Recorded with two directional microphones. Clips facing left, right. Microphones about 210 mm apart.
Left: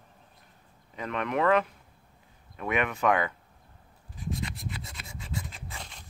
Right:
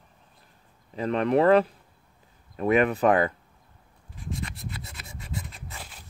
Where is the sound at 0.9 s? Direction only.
35° right (ahead or behind).